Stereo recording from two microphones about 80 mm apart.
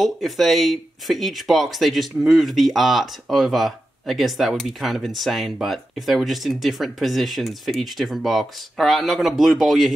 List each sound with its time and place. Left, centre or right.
0.0 s speech: centre